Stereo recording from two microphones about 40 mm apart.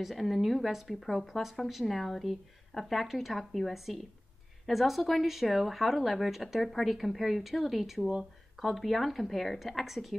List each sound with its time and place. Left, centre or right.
0.0 s speech: centre